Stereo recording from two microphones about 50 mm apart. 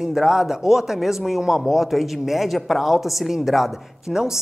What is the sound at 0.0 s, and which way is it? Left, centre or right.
A woman's voice, centre.